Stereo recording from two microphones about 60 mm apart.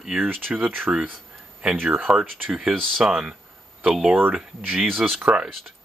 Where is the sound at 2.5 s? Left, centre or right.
Centre.